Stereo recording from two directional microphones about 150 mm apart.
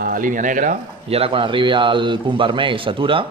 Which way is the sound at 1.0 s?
40° right (ahead or behind).